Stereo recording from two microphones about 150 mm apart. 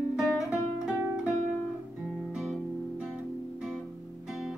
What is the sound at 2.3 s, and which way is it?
Guitar, 5° right (ahead or behind).